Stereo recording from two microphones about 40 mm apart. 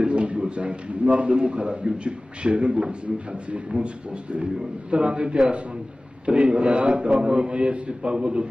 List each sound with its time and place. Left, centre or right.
0.0 s a man's voice: right